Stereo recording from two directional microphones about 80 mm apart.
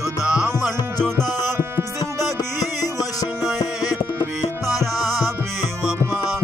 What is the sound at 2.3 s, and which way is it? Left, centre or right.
Music, left.